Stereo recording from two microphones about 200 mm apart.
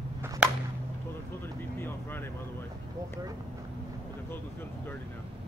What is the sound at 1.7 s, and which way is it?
Speech, 10° left (ahead or behind).